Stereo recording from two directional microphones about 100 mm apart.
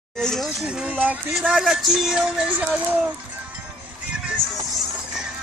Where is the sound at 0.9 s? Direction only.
15° right (ahead or behind).